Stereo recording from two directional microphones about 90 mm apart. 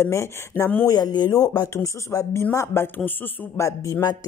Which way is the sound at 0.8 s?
45° left (ahead or behind).